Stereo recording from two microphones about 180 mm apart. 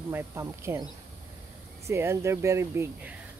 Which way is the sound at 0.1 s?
15° right (ahead or behind).